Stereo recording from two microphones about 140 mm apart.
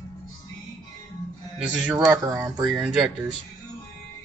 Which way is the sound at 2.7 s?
Centre (ahead or behind).